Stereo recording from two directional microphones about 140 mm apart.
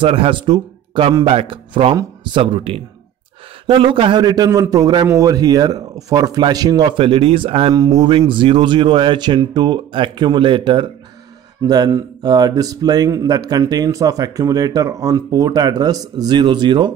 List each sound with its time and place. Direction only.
0.0 s speech: 40° right (ahead or behind)
7.7 s speech: 25° right (ahead or behind)
8.2 s speech: 35° right (ahead or behind)